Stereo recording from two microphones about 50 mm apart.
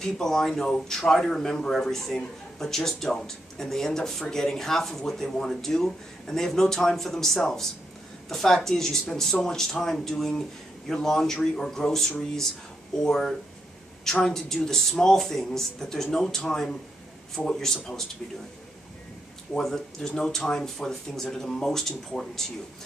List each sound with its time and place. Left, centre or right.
0.0 s speech: centre
19.6 s speech: centre